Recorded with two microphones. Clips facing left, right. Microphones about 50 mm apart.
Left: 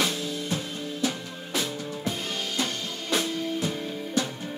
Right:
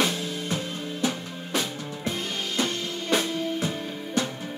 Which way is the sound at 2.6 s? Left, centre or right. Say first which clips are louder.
Right 3 dB; centre.